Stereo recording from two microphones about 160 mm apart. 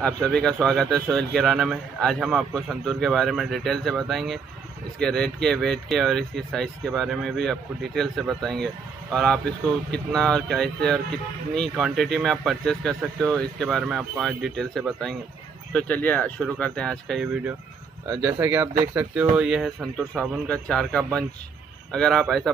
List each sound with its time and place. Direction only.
0.0 s a man's voice: 5° left (ahead or behind)
18.0 s speech: 15° right (ahead or behind)
19.3 s a man's voice: 5° right (ahead or behind)